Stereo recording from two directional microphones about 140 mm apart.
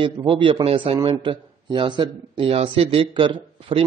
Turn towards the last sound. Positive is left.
turn(degrees=-40)  # may be behind; listen again after turning